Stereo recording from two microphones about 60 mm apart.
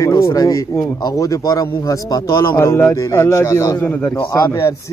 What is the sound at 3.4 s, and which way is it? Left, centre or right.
Speech, left.